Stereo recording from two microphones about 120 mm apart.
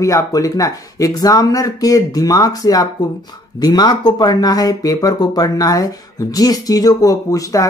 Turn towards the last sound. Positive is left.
turn(degrees=30)  # may be behind; listen again after turning